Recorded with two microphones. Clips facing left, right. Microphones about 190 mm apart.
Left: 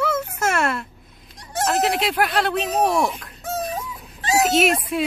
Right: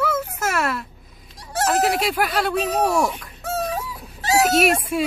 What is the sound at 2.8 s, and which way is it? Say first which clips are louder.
Speech: left 1 dB; 20° left (ahead or behind).